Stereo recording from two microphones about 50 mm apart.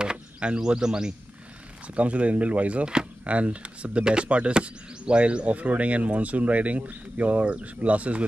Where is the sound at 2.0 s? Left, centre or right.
Right.